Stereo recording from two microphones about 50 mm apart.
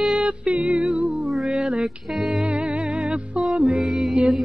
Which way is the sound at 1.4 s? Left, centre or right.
Right.